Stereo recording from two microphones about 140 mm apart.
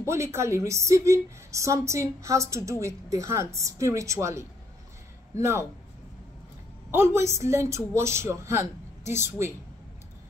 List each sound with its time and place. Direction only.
0.0 s a woman's voice: 20° right (ahead or behind)
6.9 s a woman's voice: 20° right (ahead or behind)